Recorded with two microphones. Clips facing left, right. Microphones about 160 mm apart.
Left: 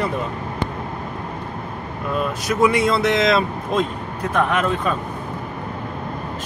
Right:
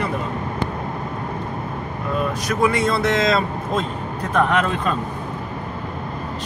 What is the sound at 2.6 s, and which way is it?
Speech, 20° left (ahead or behind).